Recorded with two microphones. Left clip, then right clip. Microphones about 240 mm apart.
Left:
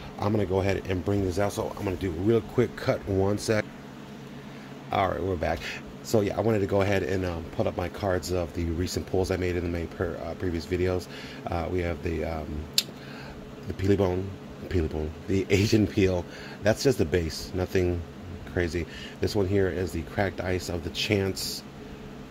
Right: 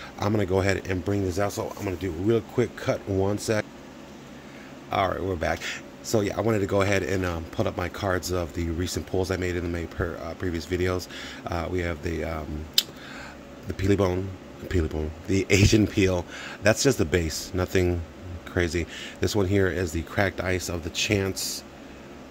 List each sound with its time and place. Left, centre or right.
0.2 s speech: centre
4.8 s speech: centre